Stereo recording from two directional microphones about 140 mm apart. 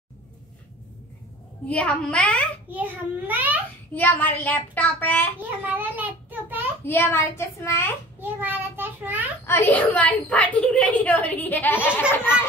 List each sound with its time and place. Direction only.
1.7 s a woman's voice: 10° left (ahead or behind)
2.7 s a child's voice: 15° right (ahead or behind)
3.9 s a woman's voice: 15° left (ahead or behind)
5.4 s a child's voice: 10° right (ahead or behind)
6.9 s a woman's voice: 15° left (ahead or behind)
8.2 s a child's voice: 15° right (ahead or behind)
9.5 s a woman's voice: 15° left (ahead or behind)